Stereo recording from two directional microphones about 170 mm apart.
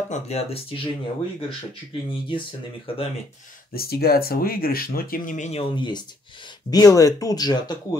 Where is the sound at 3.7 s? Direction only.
65° left (ahead or behind).